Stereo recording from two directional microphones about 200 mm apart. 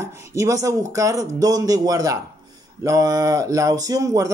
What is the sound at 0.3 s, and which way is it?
Speech, 15° right (ahead or behind).